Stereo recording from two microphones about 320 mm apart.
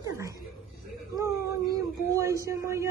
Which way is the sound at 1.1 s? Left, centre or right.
Centre.